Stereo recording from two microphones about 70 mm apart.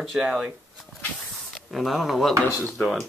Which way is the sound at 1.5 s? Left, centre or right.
Centre.